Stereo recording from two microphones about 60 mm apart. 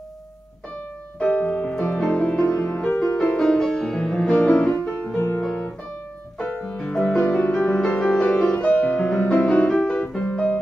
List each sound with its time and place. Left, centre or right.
1.2 s music: left
6.8 s music: centre
7.3 s music: left